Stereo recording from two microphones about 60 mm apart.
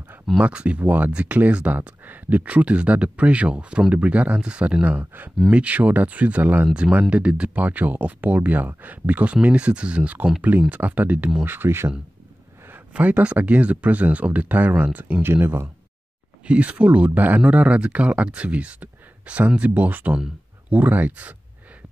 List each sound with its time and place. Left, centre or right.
0.4 s speech: centre
11.4 s speech: right
12.9 s speech: right
15.2 s speech: right
16.4 s speech: right